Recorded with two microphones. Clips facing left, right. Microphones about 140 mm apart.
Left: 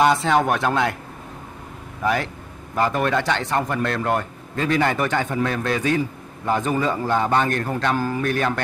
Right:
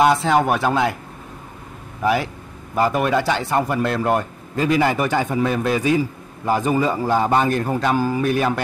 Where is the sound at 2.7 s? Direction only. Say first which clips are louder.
Right 2 dB; 10° right (ahead or behind).